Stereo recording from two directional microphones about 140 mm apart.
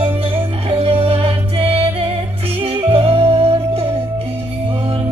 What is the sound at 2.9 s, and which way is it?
Music, 40° right (ahead or behind).